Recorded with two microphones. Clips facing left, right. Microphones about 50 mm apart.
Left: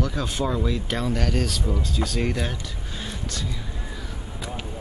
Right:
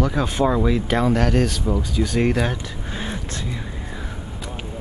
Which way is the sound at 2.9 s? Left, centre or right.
Right.